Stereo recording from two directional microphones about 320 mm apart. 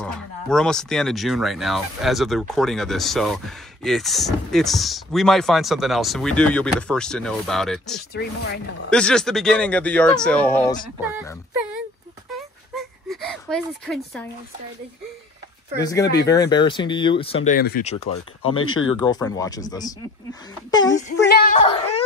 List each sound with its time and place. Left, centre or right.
0.0 s speech: centre
8.1 s speech: left
8.9 s speech: centre
12.7 s a sound: centre
15.8 s speech: centre
18.6 s speech: left
19.0 s speech: centre
21.2 s music: left
21.5 s a sound: centre